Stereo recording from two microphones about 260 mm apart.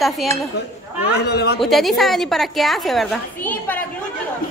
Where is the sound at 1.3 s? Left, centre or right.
Left.